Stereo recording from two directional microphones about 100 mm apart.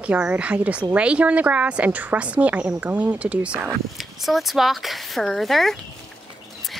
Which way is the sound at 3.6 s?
Centre (ahead or behind).